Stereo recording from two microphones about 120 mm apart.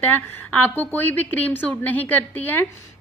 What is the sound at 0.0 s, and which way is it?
A woman's voice, 15° left (ahead or behind).